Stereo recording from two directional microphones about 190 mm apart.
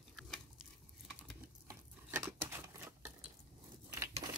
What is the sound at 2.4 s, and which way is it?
Typewriter, 15° right (ahead or behind).